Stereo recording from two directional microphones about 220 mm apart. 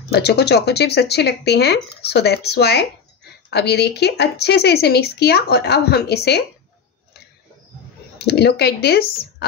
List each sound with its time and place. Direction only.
0.1 s speech: 50° left (ahead or behind)
8.2 s speech: 50° left (ahead or behind)